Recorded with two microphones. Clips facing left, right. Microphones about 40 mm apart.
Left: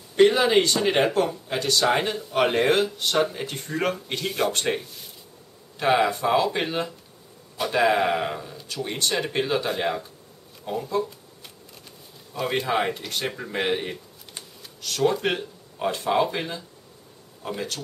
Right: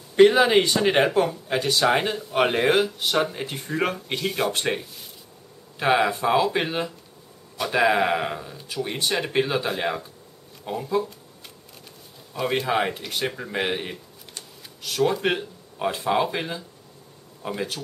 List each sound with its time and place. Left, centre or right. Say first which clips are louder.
0.1 s speech: right 2 dB; centre
12.4 s speech: right 1 dB; centre